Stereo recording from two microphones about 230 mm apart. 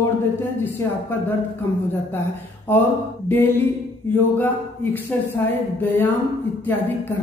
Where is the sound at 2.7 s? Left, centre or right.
Centre.